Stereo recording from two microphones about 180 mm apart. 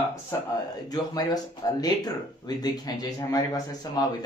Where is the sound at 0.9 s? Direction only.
20° left (ahead or behind).